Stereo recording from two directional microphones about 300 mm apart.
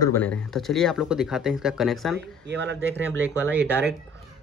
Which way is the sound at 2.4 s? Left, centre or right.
Right.